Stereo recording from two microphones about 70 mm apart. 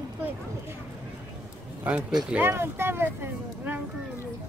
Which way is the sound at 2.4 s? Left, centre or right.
Right.